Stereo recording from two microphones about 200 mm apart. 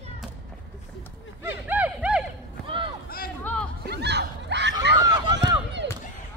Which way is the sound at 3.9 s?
55° right (ahead or behind).